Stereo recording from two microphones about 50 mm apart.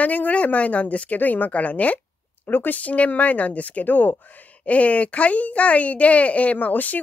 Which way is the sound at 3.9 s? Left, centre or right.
Left.